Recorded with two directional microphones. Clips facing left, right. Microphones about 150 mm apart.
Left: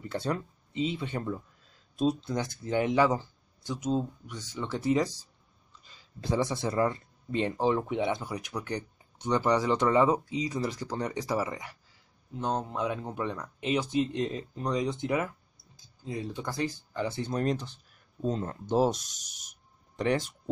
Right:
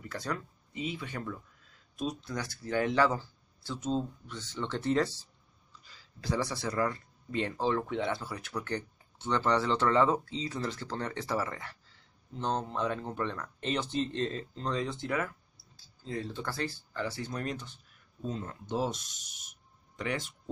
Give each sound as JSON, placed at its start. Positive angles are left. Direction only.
{"t": 0.1, "sound": "speech", "side_deg": 25}